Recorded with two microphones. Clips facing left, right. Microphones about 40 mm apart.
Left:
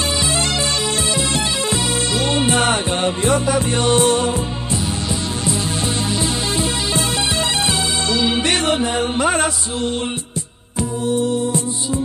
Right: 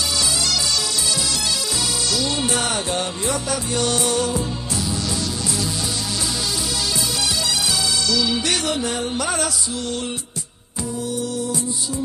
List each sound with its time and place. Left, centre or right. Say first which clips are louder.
0.2 s music: left 3 dB; left
6.1 s music: left 5 dB; left
8.8 s mantra: left 6 dB; left
10.8 s music: left 6 dB; left